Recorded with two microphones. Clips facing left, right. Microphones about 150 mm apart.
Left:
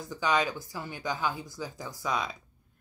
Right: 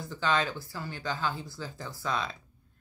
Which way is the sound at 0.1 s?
15° left (ahead or behind).